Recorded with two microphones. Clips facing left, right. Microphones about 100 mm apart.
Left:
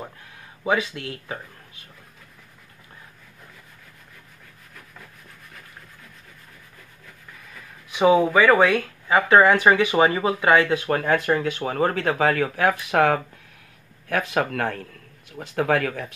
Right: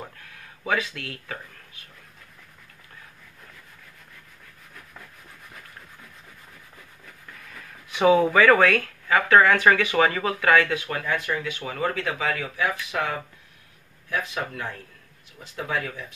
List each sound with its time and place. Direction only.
0.7 s speech: 25° left (ahead or behind)
7.9 s speech: 10° left (ahead or behind); by 10.8 s 25° left (ahead or behind)
10.8 s speech: 40° left (ahead or behind); by 16.1 s 70° left (ahead or behind)